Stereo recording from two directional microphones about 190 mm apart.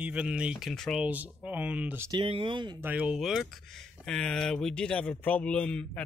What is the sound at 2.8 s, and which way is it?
Speech, 5° right (ahead or behind).